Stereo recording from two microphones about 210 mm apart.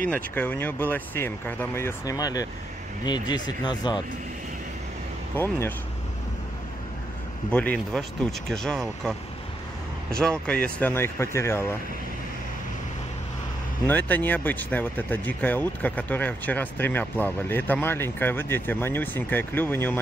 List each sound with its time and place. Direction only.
0.0 s speech: 10° left (ahead or behind)
5.3 s speech: 10° left (ahead or behind)
7.5 s speech: 5° left (ahead or behind)
10.4 s speech: 5° left (ahead or behind)
13.8 s speech: 10° left (ahead or behind)